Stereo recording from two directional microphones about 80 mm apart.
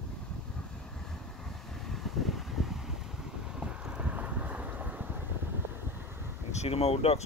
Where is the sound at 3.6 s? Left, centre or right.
Centre.